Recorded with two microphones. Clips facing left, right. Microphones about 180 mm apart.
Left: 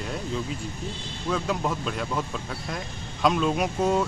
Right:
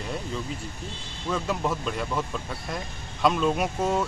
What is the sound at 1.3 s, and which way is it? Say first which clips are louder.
Speech: even; centre (ahead or behind).